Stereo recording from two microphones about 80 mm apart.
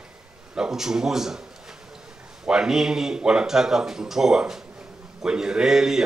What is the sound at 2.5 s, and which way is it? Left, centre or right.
Speech, centre.